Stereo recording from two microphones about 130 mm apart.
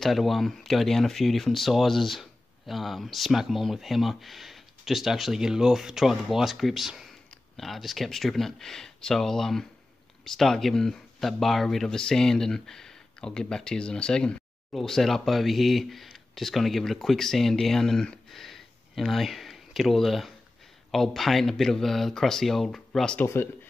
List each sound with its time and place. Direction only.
0.0 s speech: centre (ahead or behind)
23.2 s speech: 20° left (ahead or behind)